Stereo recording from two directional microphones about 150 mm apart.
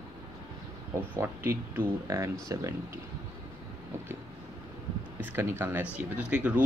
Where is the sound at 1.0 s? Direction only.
15° right (ahead or behind).